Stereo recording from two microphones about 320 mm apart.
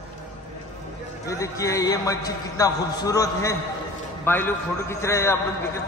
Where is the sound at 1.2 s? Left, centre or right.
Centre.